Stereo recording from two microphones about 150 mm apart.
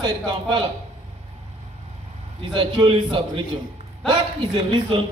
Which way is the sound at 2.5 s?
30° right (ahead or behind).